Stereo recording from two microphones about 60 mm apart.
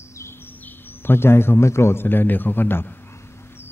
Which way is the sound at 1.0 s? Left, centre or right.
Left.